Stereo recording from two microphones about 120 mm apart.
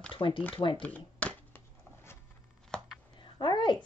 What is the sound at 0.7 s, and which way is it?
Shuffling cards, 10° left (ahead or behind).